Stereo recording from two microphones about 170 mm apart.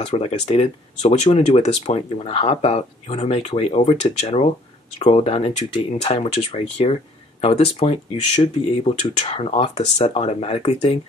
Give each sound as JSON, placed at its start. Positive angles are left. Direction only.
{"t": 0.0, "sound": "speech", "side_deg": 35}